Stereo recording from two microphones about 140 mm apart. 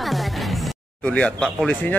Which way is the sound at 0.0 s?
Centre (ahead or behind).